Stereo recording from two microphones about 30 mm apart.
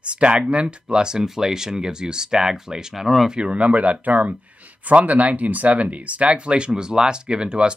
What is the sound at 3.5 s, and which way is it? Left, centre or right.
Speech, right.